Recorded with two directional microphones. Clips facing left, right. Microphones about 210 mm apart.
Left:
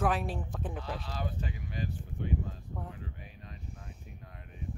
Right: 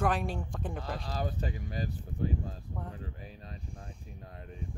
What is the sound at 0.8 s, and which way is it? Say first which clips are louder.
Speech: right 2 dB; 40° right (ahead or behind).